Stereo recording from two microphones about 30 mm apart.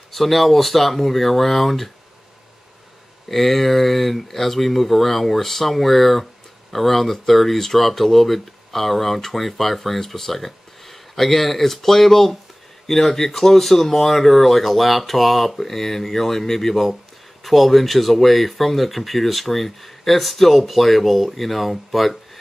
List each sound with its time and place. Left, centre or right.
0.1 s speech: centre
3.3 s speech: centre